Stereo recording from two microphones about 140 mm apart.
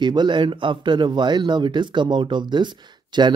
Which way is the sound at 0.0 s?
30° right (ahead or behind).